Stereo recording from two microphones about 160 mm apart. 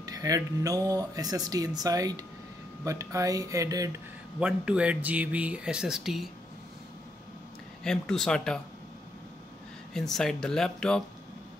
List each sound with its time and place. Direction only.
0.0 s speech: 25° right (ahead or behind)
4.4 s speech: 5° right (ahead or behind)
7.8 s speech: 5° left (ahead or behind)
9.9 s speech: 5° left (ahead or behind)